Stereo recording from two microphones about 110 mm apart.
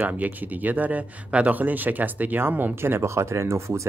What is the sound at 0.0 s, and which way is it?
Speech, 15° right (ahead or behind).